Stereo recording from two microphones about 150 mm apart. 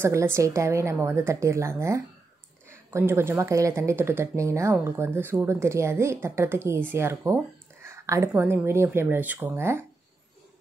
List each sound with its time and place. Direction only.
0.0 s speech: 15° right (ahead or behind)
7.8 s a sound: 20° right (ahead or behind)
8.3 s speech: 15° right (ahead or behind)